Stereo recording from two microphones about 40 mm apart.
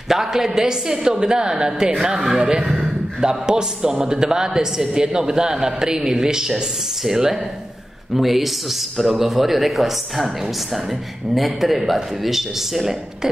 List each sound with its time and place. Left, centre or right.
0.1 s a man's voice: centre